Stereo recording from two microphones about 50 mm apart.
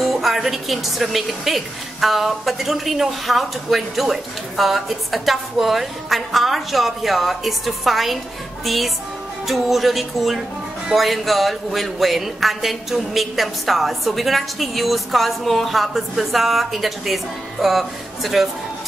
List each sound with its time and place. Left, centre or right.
0.0 s a woman's voice: centre